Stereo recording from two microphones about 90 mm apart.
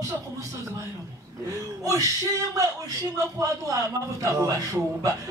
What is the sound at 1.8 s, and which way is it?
Speech, 35° right (ahead or behind).